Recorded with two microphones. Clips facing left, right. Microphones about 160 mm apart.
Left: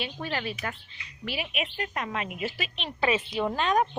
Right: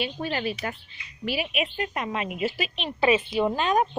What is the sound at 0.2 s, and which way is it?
A woman's voice, 25° right (ahead or behind).